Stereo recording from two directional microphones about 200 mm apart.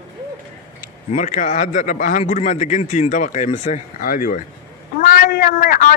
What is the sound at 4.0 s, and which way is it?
Speech, 45° left (ahead or behind).